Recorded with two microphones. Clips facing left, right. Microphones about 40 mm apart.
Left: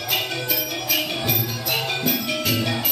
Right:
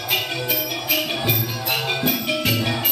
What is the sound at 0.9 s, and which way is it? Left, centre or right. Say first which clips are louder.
Music: right 2 dB; centre.